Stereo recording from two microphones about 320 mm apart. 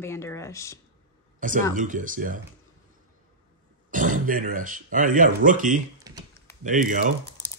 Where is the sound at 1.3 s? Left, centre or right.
Right.